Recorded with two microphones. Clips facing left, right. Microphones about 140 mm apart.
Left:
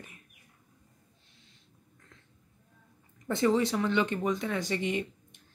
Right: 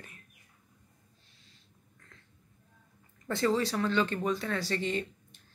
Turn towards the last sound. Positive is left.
turn(degrees=15)  # may be behind; listen again after turning